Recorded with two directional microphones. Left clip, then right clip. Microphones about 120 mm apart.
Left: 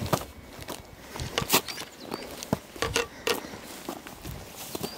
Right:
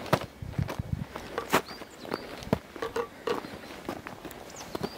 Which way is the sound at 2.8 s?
80° left.